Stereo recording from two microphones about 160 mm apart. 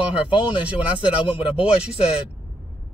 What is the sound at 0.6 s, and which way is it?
Speech, 10° right (ahead or behind).